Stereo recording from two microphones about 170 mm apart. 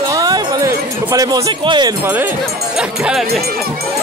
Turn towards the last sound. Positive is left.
turn(degrees=-5)  # may be behind; listen again after turning